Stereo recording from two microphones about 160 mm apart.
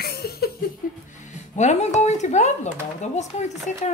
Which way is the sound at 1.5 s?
45° left (ahead or behind).